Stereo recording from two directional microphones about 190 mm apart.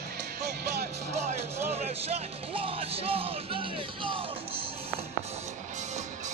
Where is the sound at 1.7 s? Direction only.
30° right (ahead or behind).